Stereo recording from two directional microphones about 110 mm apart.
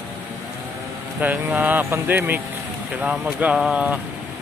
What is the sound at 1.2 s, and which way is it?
Speech, 15° right (ahead or behind).